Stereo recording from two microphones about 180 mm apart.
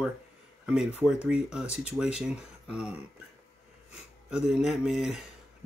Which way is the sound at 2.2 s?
5° right (ahead or behind).